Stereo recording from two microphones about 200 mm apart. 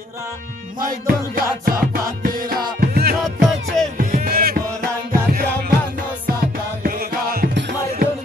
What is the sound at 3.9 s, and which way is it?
Music, 40° right (ahead or behind).